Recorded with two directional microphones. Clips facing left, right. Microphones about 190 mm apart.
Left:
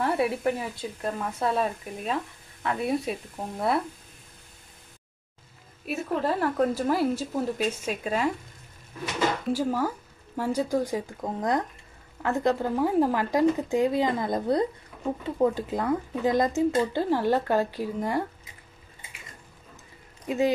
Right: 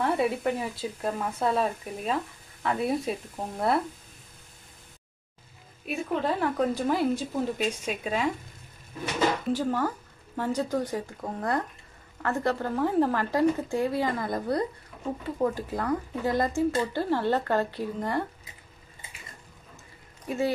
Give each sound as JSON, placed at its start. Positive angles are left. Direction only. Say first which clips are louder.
{"t": 0.0, "sound": "speech", "louder": "left 1 dB", "side_deg": 0}
{"t": 5.9, "sound": "speech", "louder": "left 1 dB", "side_deg": 5}
{"t": 9.5, "sound": "speech", "louder": "left 1 dB", "side_deg": 5}
{"t": 20.2, "sound": "speech", "louder": "left 3 dB", "side_deg": 15}